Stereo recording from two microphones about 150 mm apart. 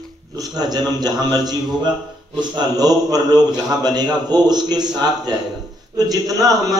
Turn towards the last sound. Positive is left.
turn(degrees=-25)  # may be behind; listen again after turning